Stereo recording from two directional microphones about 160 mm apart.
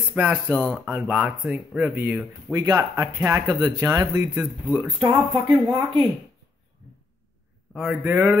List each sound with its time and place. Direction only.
0.1 s speech: 10° right (ahead or behind)
7.7 s a man's voice: 5° right (ahead or behind)